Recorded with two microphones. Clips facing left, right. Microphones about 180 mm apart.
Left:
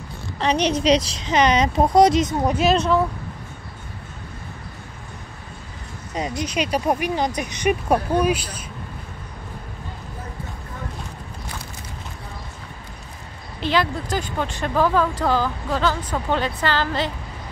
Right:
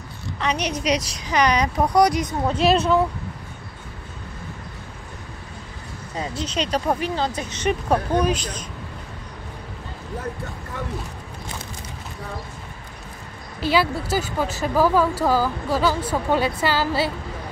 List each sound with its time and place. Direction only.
0.4 s a woman's voice: 30° left (ahead or behind)
2.5 s speech: centre (ahead or behind)
6.1 s speech: 15° left (ahead or behind)
13.6 s speech: 5° right (ahead or behind)